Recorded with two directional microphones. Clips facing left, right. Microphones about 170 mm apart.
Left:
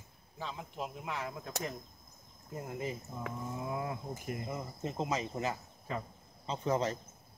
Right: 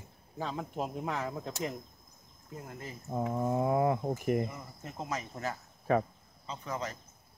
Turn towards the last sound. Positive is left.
turn(degrees=30)  # may be behind; listen again after turning